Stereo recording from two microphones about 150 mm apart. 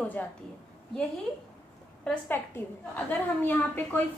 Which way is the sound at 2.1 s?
15° left (ahead or behind).